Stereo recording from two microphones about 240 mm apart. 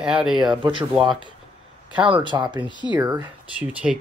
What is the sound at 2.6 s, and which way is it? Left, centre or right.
Speech, centre.